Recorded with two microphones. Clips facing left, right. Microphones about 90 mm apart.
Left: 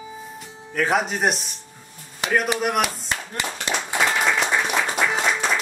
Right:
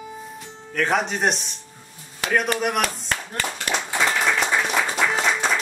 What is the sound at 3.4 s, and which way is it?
Clapping, 20° left (ahead or behind).